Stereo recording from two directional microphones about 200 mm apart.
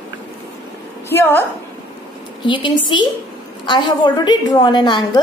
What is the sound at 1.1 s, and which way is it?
Speech, 10° left (ahead or behind).